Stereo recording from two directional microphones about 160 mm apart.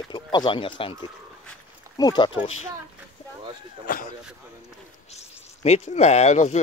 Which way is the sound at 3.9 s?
60° left (ahead or behind).